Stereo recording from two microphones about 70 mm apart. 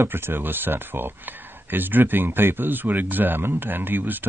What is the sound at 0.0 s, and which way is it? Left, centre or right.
Speech, right.